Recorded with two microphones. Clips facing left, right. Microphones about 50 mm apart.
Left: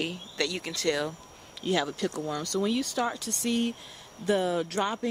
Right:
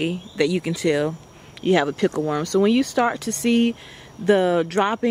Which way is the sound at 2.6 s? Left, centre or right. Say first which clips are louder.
Right 10 dB; right.